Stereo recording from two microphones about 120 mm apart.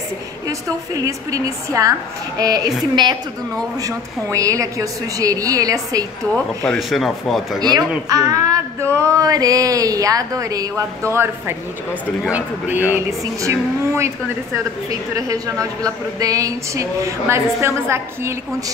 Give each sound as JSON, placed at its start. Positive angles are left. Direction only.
{"t": 0.5, "sound": "a woman's voice", "side_deg": -30}
{"t": 6.3, "sound": "speech", "side_deg": 5}
{"t": 8.1, "sound": "a woman's voice", "side_deg": -30}
{"t": 12.9, "sound": "a woman's voice", "side_deg": -25}